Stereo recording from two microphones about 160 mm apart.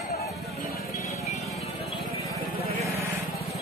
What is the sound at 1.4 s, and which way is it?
Music, centre (ahead or behind).